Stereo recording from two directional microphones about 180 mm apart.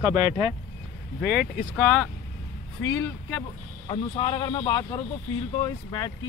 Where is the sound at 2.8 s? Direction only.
15° left (ahead or behind).